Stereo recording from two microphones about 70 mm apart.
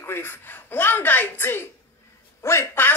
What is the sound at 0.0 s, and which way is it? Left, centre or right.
A woman's voice, left.